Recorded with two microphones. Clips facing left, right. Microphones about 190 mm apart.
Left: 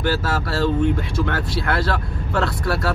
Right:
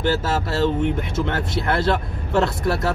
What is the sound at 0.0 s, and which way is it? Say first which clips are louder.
Speech: right 1 dB; 25° right (ahead or behind).